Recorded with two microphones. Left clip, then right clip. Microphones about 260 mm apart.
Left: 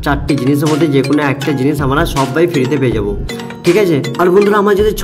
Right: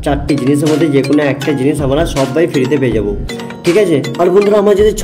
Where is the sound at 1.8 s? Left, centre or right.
Left.